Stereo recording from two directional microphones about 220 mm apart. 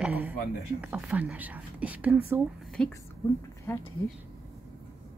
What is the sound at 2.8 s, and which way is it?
Speech, 5° left (ahead or behind).